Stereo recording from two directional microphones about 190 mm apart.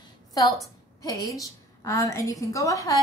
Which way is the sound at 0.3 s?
20° left (ahead or behind).